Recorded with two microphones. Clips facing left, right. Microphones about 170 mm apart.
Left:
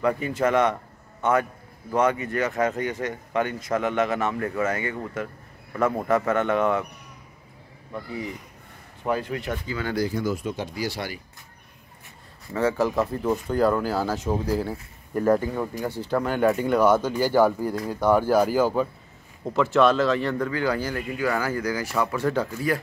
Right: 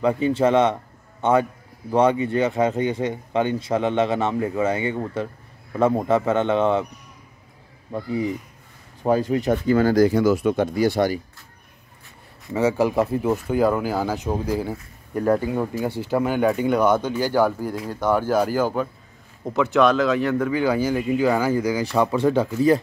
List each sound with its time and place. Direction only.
0.0 s a man's voice: 25° right (ahead or behind)
9.0 s speech: 35° right (ahead or behind)
10.0 s speech: 75° right (ahead or behind); by 11.1 s 50° right (ahead or behind)
12.4 s speech: 10° right (ahead or behind)
17.8 s speech: 10° left (ahead or behind)
20.5 s a man's voice: 15° right (ahead or behind)